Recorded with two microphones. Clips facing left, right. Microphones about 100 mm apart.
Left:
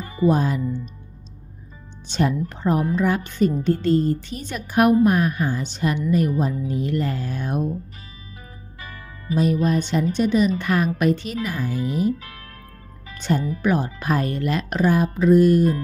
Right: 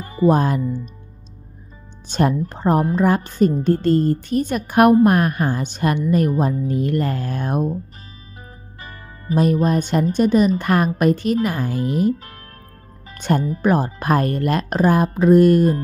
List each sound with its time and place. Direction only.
0.0 s speech: 45° right (ahead or behind)
2.0 s a woman's voice: 45° right (ahead or behind)
9.3 s a woman's voice: 45° right (ahead or behind)